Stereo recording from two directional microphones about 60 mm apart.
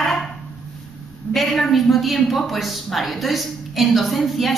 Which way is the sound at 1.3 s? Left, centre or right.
Centre.